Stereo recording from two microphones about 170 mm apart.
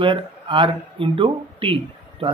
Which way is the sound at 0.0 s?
30° right (ahead or behind).